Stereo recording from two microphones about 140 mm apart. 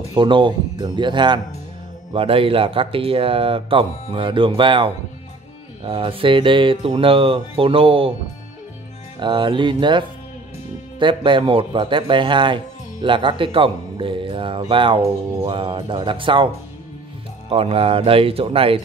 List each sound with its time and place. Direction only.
0.2 s speech: 35° right (ahead or behind)
9.2 s speech: 35° right (ahead or behind)
17.5 s speech: 45° right (ahead or behind)